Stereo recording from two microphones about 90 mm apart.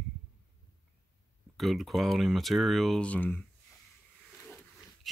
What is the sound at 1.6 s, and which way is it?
Speech, centre (ahead or behind).